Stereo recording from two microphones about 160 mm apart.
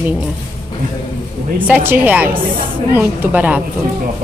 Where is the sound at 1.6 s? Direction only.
10° right (ahead or behind).